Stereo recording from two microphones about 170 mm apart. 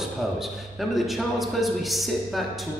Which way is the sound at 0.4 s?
Centre (ahead or behind).